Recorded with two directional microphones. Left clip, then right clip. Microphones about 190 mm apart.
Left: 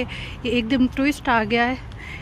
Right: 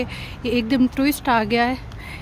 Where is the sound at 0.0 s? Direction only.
Centre (ahead or behind).